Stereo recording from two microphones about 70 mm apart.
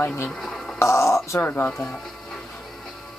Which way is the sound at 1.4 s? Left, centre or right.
Left.